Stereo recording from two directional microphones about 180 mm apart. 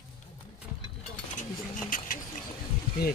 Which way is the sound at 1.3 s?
50° left (ahead or behind).